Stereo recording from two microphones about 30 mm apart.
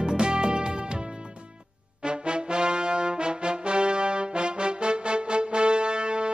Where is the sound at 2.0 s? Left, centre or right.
Right.